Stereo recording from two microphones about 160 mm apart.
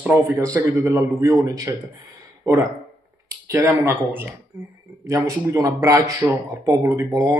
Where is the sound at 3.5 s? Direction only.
15° right (ahead or behind).